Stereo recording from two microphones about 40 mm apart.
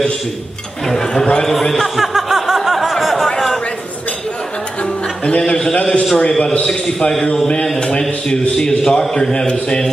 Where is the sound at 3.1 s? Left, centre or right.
Centre.